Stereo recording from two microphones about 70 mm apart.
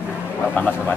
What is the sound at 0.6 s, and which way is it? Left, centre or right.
Speech, left.